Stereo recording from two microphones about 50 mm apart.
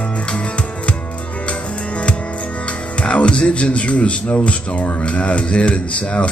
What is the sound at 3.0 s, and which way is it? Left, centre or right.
Speech, left.